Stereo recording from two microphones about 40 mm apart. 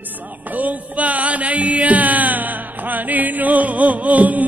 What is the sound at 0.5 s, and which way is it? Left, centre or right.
Mantra, right.